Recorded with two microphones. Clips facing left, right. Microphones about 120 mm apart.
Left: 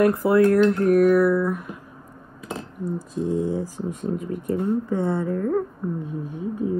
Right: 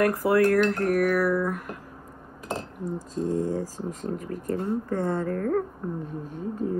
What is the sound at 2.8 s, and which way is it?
Speech, 15° left (ahead or behind).